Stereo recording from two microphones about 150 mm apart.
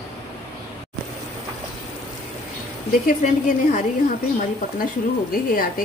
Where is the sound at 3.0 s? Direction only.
65° left (ahead or behind).